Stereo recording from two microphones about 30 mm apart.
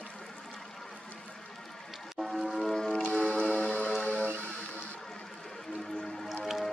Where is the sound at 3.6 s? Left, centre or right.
Left.